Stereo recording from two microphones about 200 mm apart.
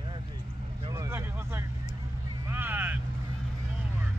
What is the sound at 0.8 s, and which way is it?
Vehicle, 20° right (ahead or behind).